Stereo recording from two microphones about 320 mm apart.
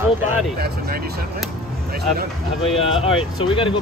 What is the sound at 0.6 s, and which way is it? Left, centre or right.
Speech, right.